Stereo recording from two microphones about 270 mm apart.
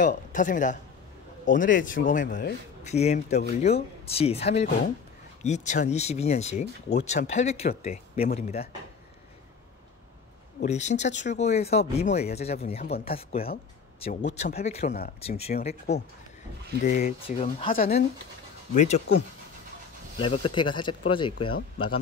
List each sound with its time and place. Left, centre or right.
0.0 s speech: left
10.6 s speech: left
17.7 s speech: left
20.2 s speech: centre